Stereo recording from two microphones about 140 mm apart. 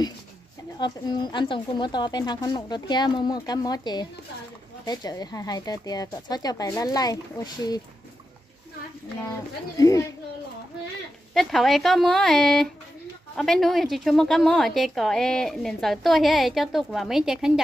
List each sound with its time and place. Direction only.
0.7 s speech: 30° left (ahead or behind)
9.8 s speech: 25° left (ahead or behind)
11.3 s a woman's voice: centre (ahead or behind)